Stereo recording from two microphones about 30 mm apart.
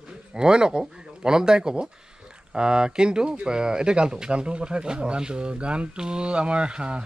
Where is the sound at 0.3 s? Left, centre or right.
Right.